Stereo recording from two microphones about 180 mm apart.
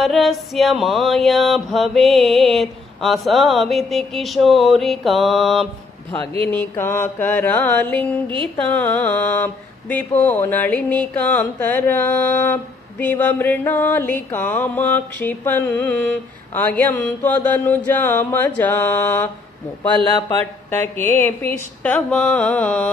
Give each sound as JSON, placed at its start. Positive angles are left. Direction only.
{"t": 0.0, "sound": "music", "side_deg": 0}
{"t": 6.9, "sound": "mantra", "side_deg": 10}
{"t": 20.8, "sound": "mantra", "side_deg": 10}